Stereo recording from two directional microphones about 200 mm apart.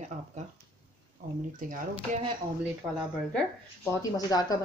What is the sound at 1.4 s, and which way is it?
Speech, 40° right (ahead or behind).